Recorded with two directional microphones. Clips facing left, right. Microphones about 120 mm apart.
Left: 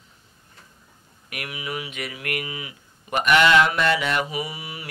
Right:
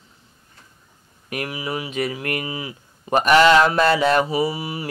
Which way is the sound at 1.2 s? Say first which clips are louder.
Right 6 dB; 35° right (ahead or behind).